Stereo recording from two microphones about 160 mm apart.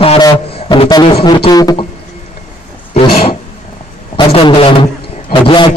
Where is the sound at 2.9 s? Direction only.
35° left (ahead or behind).